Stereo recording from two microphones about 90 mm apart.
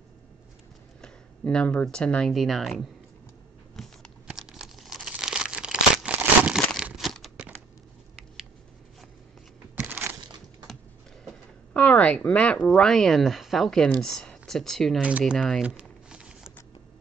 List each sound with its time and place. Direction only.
1.0 s speech: 10° left (ahead or behind)
2.3 s speech: centre (ahead or behind)
3.7 s a sound: 5° left (ahead or behind)
4.3 s crumpling: 5° right (ahead or behind)
6.8 s crumpling: centre (ahead or behind)
9.8 s a sound: 20° right (ahead or behind)
11.7 s speech: 15° left (ahead or behind)
15.0 s speech: 15° right (ahead or behind)
15.3 s speech: 5° left (ahead or behind)
15.6 s crumpling: 10° right (ahead or behind)